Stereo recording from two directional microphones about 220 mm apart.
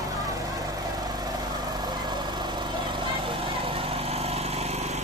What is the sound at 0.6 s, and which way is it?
Vehicle, 15° right (ahead or behind).